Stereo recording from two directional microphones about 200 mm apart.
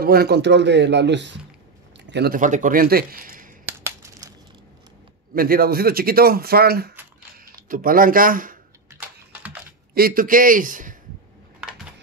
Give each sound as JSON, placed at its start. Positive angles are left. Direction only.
{"t": 0.0, "sound": "speech", "side_deg": -50}
{"t": 3.8, "sound": "crushing", "side_deg": -15}
{"t": 5.3, "sound": "speech", "side_deg": -45}
{"t": 8.9, "sound": "typing", "side_deg": -10}
{"t": 9.9, "sound": "speech", "side_deg": -45}